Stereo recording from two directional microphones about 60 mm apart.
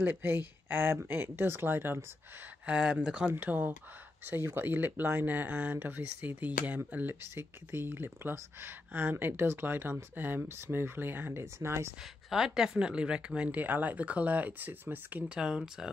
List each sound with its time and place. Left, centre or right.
0.0 s speech: right
2.6 s speech: centre
3.3 s speech: right
4.3 s speech: right
11.4 s speech: right
12.0 s speech: centre; by 15.2 s right
15.2 s speech: centre